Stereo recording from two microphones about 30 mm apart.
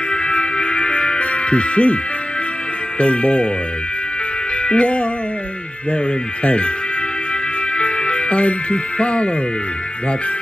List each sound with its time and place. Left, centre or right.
0.1 s music: left
3.0 s speech: left
4.6 s speech: left
6.4 s speech: left
7.7 s music: left